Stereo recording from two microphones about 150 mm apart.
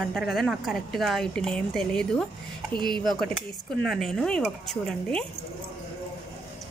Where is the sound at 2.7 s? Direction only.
30° right (ahead or behind).